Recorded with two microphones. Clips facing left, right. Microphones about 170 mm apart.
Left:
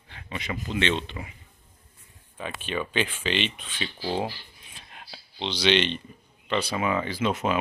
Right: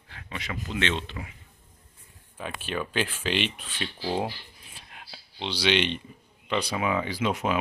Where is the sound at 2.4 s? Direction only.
5° right (ahead or behind).